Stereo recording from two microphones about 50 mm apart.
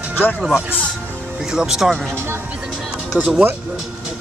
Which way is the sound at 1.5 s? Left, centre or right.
Centre.